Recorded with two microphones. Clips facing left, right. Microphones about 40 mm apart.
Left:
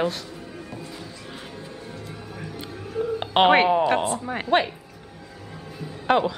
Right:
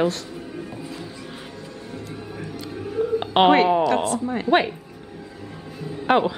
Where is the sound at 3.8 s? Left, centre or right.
Left.